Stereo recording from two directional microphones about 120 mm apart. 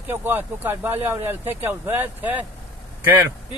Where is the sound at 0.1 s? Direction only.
15° right (ahead or behind).